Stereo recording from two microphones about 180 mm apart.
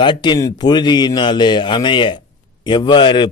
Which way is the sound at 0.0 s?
25° left (ahead or behind).